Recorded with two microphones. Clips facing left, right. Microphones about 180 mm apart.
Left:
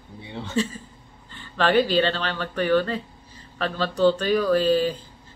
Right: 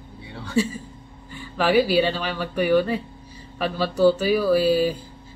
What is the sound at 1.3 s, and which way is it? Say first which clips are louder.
Speech: right 1 dB; 10° right (ahead or behind).